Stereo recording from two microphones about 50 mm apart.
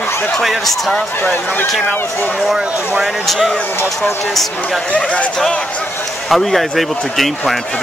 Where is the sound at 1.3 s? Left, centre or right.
Left.